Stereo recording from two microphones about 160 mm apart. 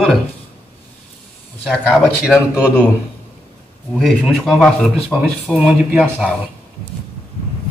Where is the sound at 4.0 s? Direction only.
Centre (ahead or behind).